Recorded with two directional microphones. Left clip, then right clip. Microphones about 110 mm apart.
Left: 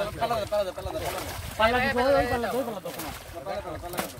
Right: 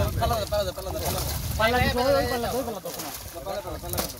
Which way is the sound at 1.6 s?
10° right (ahead or behind).